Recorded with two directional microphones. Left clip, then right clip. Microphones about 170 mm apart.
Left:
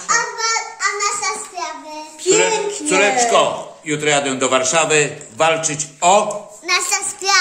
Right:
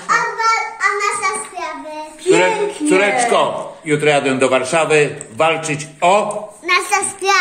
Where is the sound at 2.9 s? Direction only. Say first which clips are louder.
Right 1 dB; 35° right (ahead or behind).